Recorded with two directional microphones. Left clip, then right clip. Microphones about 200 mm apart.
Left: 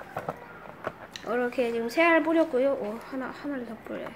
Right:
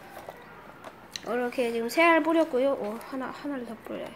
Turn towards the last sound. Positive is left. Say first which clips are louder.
# even
turn(degrees=-10)  # may be behind; listen again after turning